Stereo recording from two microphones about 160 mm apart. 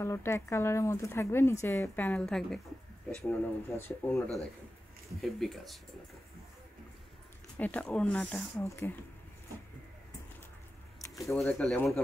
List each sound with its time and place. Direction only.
0.0 s speech: 15° left (ahead or behind)
5.2 s speech: centre (ahead or behind)
7.5 s speech: 10° left (ahead or behind)
11.0 s a sound: 20° left (ahead or behind)
11.3 s speech: 5° left (ahead or behind)